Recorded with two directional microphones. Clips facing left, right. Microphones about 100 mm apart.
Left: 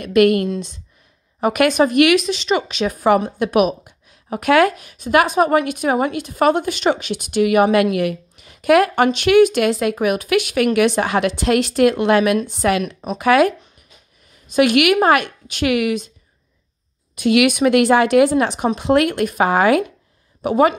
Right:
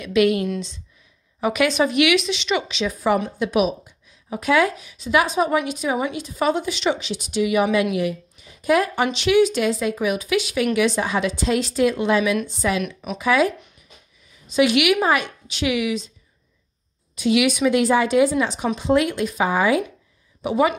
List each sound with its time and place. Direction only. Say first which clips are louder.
0.0 s speech: left 4 dB; 55° left (ahead or behind)
12.8 s speech: left 3 dB; 35° left (ahead or behind)
13.2 s speech: left 5 dB; 60° left (ahead or behind)
17.1 s speech: left 4 dB; 60° left (ahead or behind)
20.4 s speech: left 4 dB; 50° left (ahead or behind)